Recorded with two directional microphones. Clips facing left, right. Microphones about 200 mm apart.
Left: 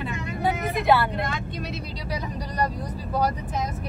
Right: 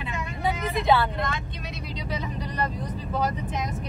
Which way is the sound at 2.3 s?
40° left (ahead or behind).